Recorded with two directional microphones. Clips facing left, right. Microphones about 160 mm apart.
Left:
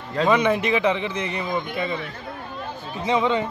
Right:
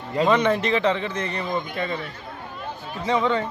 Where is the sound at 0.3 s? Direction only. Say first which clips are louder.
Left 1 dB; 10° left (ahead or behind).